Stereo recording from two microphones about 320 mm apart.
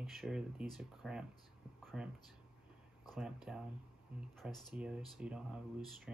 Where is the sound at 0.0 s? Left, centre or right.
Centre.